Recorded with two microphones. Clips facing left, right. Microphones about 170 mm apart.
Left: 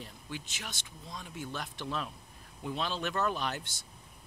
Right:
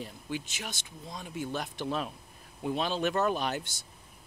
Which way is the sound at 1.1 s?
20° right (ahead or behind).